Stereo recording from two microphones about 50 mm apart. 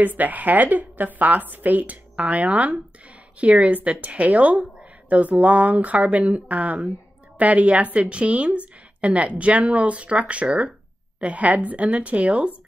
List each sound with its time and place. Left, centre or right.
0.0 s a woman's voice: right